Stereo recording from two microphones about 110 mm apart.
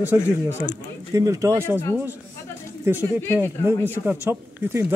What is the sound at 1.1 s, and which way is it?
Speech, 30° right (ahead or behind).